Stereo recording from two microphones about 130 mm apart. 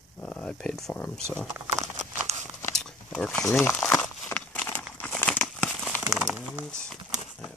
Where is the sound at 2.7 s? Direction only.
5° left (ahead or behind).